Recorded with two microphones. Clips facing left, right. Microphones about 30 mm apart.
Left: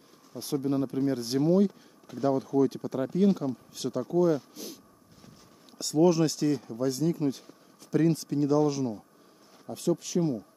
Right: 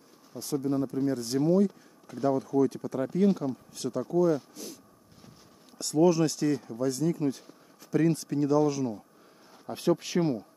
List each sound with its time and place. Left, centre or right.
0.4 s speech: left
2.0 s speech: centre
3.1 s speech: centre
5.8 s speech: centre
9.7 s speech: right